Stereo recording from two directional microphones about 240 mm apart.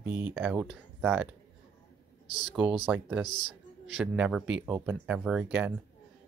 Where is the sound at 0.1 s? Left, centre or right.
Centre.